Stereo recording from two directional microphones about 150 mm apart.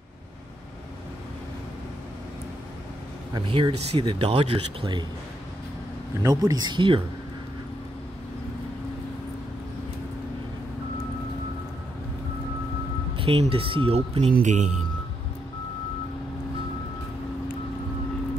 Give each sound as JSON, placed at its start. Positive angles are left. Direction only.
{"t": 3.3, "sound": "speech", "side_deg": -35}
{"t": 6.2, "sound": "speech", "side_deg": -25}
{"t": 13.2, "sound": "speech", "side_deg": -40}
{"t": 14.4, "sound": "speech", "side_deg": -55}